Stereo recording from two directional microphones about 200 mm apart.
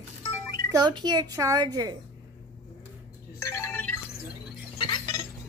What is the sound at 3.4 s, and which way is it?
Music, 15° left (ahead or behind).